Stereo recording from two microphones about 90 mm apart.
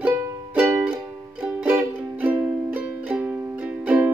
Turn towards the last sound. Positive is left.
turn(degrees=-15)  # may be behind; listen again after turning